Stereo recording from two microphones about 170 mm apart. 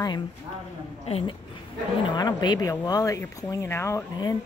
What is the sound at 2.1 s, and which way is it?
Speech, 25° left (ahead or behind).